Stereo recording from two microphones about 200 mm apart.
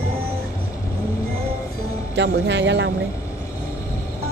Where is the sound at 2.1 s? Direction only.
60° right (ahead or behind).